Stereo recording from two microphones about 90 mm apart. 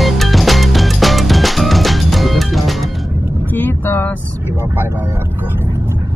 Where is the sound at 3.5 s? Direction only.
20° left (ahead or behind).